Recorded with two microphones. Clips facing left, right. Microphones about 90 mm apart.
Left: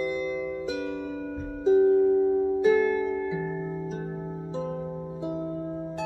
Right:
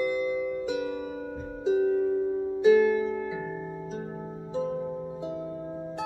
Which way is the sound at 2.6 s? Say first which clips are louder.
Right 5 dB; 10° right (ahead or behind).